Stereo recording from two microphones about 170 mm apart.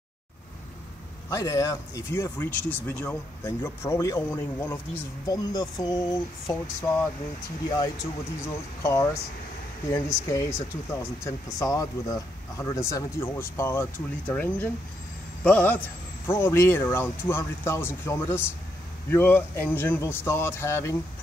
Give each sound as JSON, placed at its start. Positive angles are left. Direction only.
{"t": 1.3, "sound": "speech", "side_deg": 20}